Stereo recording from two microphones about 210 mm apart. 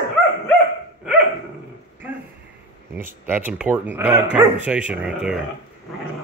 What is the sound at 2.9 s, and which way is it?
Speech, 10° right (ahead or behind).